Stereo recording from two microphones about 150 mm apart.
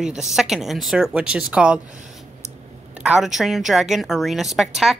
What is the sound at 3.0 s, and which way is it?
Speech, 5° right (ahead or behind).